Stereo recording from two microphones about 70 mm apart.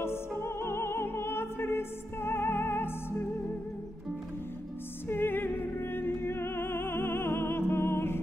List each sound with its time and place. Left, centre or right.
0.4 s music: left
5.0 s music: left